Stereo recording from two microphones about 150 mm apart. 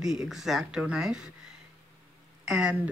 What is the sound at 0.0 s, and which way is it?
Speech, 5° right (ahead or behind).